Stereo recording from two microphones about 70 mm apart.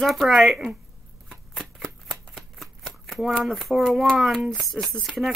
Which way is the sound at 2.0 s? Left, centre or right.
Centre.